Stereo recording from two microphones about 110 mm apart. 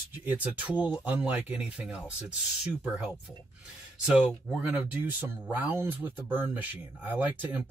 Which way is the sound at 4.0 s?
5° right (ahead or behind).